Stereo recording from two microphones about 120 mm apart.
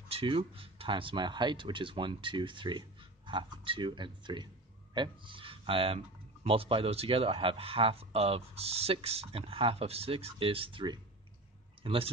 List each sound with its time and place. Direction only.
0.1 s speech: 50° right (ahead or behind)